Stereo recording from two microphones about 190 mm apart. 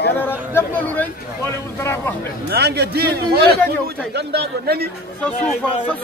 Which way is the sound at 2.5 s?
60° right (ahead or behind).